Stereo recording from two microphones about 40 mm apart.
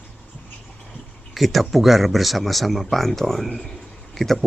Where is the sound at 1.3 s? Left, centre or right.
Centre.